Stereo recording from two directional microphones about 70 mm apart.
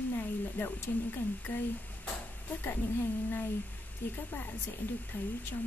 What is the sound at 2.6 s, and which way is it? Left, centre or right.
Speech, left.